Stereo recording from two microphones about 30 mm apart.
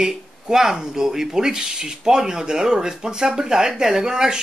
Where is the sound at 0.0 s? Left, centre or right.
Centre.